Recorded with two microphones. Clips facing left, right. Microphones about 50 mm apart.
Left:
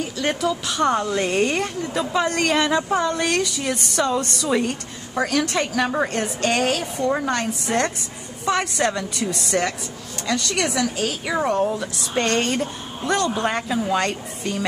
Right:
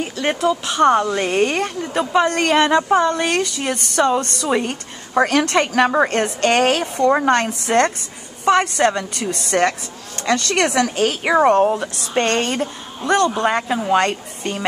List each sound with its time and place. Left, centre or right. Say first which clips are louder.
0.2 s a woman's voice: right 4 dB; right
3.5 s a woman's voice: right 3 dB; right
8.5 s a woman's voice: right 6 dB; right
9.3 s a woman's voice: right 7 dB; right
13.4 s speech: right 4 dB; right
13.7 s a woman's voice: right 4 dB; right